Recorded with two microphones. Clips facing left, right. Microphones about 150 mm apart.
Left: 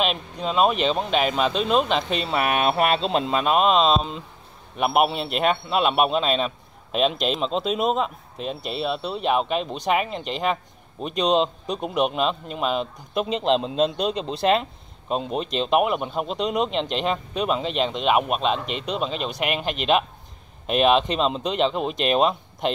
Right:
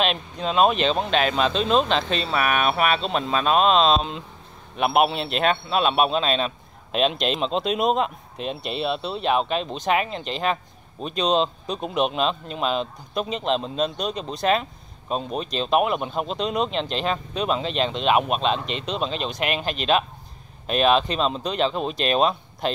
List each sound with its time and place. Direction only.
0.0 s speech: 5° left (ahead or behind)
2.4 s a man's voice: 25° left (ahead or behind); by 13.3 s 10° left (ahead or behind)
13.8 s speech: 25° left (ahead or behind)